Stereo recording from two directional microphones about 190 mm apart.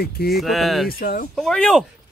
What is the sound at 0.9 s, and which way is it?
Speech, 50° left (ahead or behind).